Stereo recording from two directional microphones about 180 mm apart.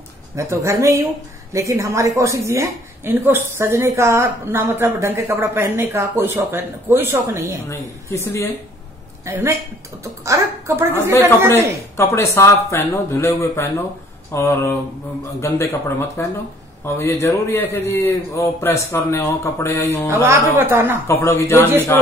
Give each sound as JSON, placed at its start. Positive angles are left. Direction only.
{"t": 0.4, "sound": "a woman's voice", "side_deg": -15}
{"t": 7.6, "sound": "a man's voice", "side_deg": 15}
{"t": 9.2, "sound": "a woman's voice", "side_deg": -15}
{"t": 12.0, "sound": "a man's voice", "side_deg": 15}
{"t": 20.1, "sound": "a woman's voice", "side_deg": -15}
{"t": 21.1, "sound": "a man's voice", "side_deg": 15}